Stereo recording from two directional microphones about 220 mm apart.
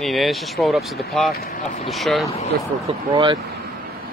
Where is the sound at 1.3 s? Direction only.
40° left (ahead or behind).